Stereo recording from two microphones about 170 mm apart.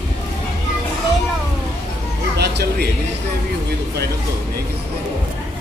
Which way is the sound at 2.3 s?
75° right (ahead or behind).